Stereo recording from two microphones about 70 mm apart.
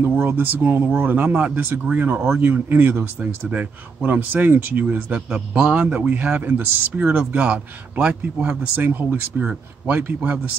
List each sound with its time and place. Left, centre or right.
0.0 s speech: right
5.3 s speech: centre